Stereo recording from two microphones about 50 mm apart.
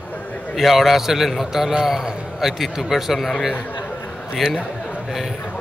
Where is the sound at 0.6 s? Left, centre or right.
Centre.